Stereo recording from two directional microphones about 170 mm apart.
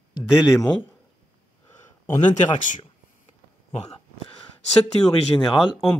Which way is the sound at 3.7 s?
35° left (ahead or behind).